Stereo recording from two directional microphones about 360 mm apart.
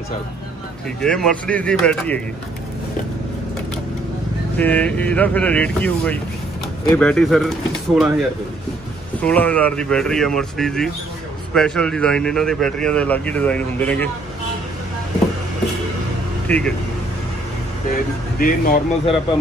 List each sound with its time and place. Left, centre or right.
1.0 s speech: centre
4.6 s speech: centre
16.4 s speech: centre
18.4 s speech: left